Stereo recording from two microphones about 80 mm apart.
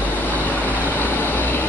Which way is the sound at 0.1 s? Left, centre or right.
Left.